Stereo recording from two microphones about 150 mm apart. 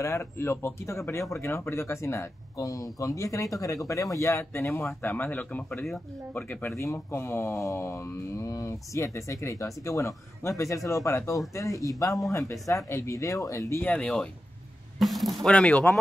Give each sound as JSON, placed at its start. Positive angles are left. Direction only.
{"t": 0.0, "sound": "speech", "side_deg": 20}